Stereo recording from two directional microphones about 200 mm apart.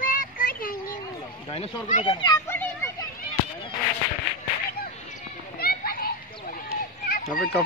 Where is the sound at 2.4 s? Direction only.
10° left (ahead or behind).